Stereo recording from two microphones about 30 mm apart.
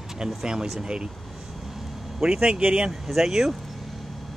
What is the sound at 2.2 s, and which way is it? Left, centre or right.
Speech, right.